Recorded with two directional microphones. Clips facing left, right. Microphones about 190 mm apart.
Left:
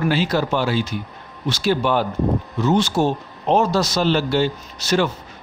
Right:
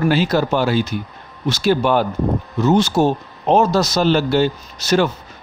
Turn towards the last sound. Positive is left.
turn(degrees=-45)  # may be behind; listen again after turning